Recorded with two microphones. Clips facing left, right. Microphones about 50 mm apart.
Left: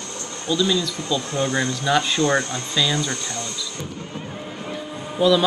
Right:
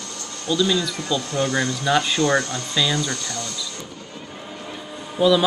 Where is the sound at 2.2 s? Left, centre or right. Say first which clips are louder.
Even; left.